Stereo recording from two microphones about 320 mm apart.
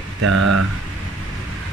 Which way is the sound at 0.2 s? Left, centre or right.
Right.